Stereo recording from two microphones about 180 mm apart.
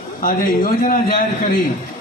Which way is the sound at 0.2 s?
50° left (ahead or behind).